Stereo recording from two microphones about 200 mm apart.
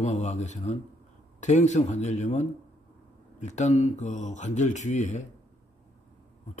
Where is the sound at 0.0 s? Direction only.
35° left (ahead or behind).